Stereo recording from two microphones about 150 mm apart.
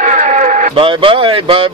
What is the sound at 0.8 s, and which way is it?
Speech, 35° right (ahead or behind).